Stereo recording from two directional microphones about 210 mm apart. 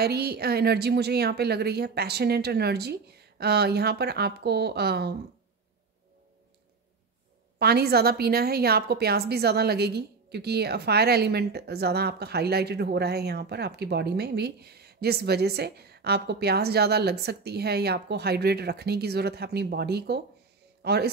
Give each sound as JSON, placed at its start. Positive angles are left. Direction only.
{"t": 0.0, "sound": "a woman's voice", "side_deg": -50}
{"t": 7.5, "sound": "a woman's voice", "side_deg": -50}